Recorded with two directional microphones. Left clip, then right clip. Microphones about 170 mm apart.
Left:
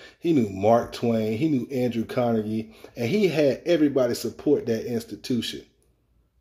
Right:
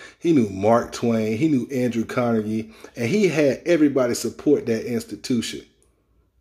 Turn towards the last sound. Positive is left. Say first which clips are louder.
# right 3 dB
turn(degrees=-15)  # may be behind; listen again after turning